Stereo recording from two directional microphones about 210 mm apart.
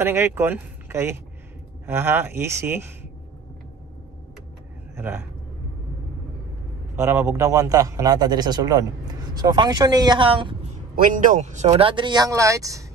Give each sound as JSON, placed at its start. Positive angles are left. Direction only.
{"t": 0.0, "sound": "a man's voice", "side_deg": -10}
{"t": 4.9, "sound": "vehicle", "side_deg": -10}
{"t": 7.0, "sound": "a man's voice", "side_deg": -10}
{"t": 11.0, "sound": "a man's voice", "side_deg": -40}
{"t": 11.7, "sound": "a man's voice", "side_deg": -20}